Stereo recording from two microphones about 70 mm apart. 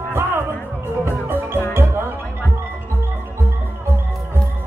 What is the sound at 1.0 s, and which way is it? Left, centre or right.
Music, right.